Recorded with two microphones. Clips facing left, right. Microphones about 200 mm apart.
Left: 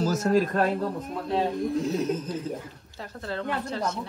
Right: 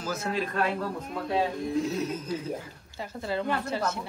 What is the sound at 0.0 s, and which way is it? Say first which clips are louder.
Speech: left 8 dB; 40° left (ahead or behind).